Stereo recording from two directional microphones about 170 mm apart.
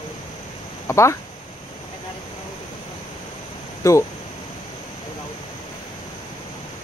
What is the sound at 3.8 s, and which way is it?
Speech, 15° left (ahead or behind).